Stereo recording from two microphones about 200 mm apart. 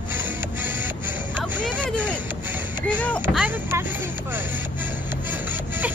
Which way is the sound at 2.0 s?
10° right (ahead or behind).